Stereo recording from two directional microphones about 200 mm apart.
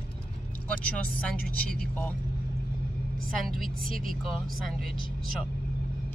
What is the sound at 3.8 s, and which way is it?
Speech, 45° right (ahead or behind).